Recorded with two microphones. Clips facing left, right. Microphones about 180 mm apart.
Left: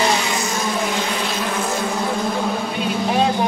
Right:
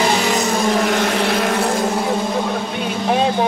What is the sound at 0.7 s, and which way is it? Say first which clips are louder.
Vehicle: right 5 dB; 65° right (ahead or behind).